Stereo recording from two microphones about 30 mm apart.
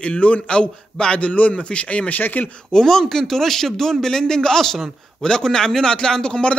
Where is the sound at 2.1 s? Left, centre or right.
Left.